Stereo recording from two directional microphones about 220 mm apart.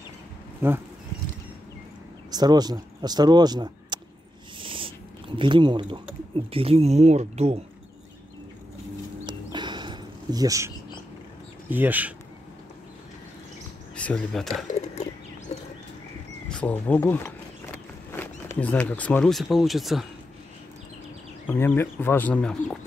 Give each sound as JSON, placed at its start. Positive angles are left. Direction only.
{"t": 0.6, "sound": "speech", "side_deg": -10}
{"t": 2.3, "sound": "speech", "side_deg": -20}
{"t": 9.2, "sound": "a sound", "side_deg": -20}
{"t": 11.7, "sound": "speech", "side_deg": -10}
{"t": 13.9, "sound": "speech", "side_deg": 5}
{"t": 15.5, "sound": "horse", "side_deg": 30}
{"t": 16.4, "sound": "speech", "side_deg": 5}
{"t": 21.5, "sound": "speech", "side_deg": 10}